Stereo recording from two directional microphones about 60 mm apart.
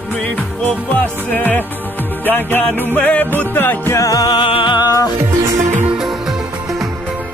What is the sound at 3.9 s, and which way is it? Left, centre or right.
Music, left.